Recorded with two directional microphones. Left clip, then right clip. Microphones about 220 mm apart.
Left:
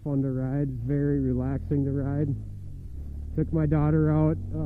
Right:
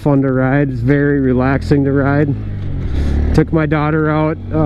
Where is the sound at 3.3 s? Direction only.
10° right (ahead or behind).